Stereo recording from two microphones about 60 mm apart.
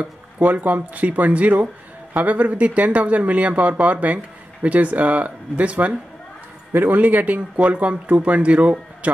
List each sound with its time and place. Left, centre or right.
0.0 s speech: right